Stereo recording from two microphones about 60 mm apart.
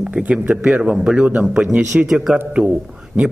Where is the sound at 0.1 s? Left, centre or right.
Centre.